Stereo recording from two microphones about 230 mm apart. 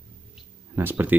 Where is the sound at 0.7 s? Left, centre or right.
Centre.